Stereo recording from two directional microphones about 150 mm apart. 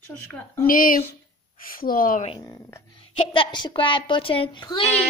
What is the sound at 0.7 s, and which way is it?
Speech, 70° left (ahead or behind).